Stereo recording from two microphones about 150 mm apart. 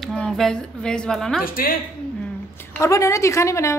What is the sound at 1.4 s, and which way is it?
Speech, 75° left (ahead or behind).